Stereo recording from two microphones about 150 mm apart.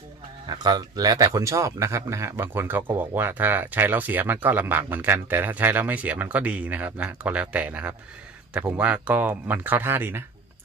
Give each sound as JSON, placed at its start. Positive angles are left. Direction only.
{"t": 0.5, "sound": "speech", "side_deg": -30}